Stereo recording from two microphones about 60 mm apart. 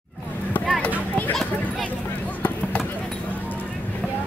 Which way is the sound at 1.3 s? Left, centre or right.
Centre.